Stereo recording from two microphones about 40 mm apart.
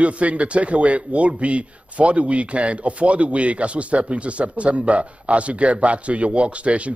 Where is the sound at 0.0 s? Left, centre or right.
Right.